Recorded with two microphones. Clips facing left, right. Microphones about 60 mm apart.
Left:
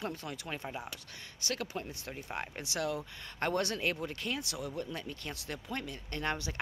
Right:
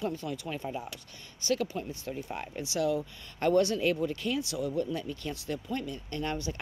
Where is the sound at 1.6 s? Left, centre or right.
Left.